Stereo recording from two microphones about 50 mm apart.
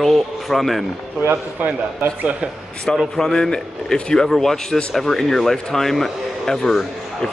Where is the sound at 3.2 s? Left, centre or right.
Centre.